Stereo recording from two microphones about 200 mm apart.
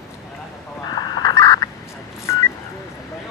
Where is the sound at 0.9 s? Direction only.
20° left (ahead or behind).